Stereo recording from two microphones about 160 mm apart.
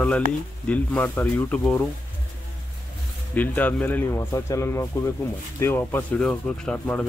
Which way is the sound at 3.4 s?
10° left (ahead or behind).